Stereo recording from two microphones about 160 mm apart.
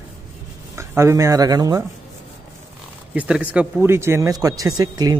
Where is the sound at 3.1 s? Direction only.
10° right (ahead or behind).